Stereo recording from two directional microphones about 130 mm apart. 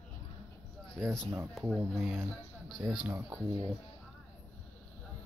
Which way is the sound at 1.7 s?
Centre (ahead or behind).